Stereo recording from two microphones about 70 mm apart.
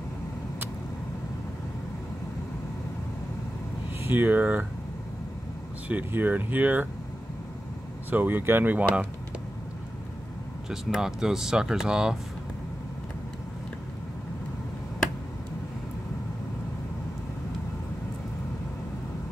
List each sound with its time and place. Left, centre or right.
4.0 s speech: right
5.9 s speech: right
8.1 s speech: right
11.0 s speech: centre